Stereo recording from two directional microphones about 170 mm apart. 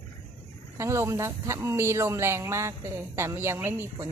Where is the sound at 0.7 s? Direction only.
15° right (ahead or behind).